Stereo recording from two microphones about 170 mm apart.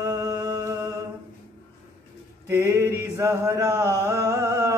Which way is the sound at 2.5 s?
15° right (ahead or behind).